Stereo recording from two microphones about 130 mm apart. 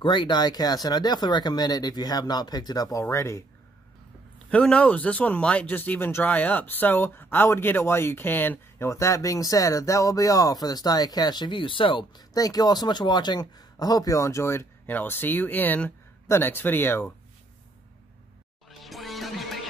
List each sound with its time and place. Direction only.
0.0 s speech: 35° left (ahead or behind); by 3.4 s 20° left (ahead or behind)
4.5 s speech: 10° left (ahead or behind)
18.7 s music: centre (ahead or behind)